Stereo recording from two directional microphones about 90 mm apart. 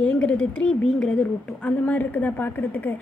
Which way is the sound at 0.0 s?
15° left (ahead or behind).